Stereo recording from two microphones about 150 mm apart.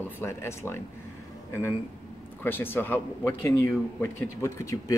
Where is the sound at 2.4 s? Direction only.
15° left (ahead or behind).